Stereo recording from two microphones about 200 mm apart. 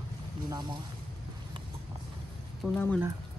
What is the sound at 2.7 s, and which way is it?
Speech, 10° left (ahead or behind).